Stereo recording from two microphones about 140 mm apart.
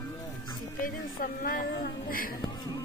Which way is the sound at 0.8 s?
90° left.